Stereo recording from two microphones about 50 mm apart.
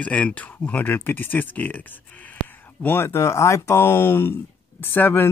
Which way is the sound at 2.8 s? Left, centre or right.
Left.